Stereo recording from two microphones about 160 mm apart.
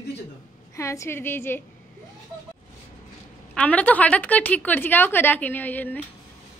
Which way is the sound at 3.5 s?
10° left (ahead or behind).